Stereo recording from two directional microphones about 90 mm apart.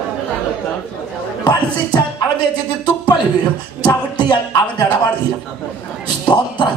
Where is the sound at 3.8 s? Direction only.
55° left (ahead or behind).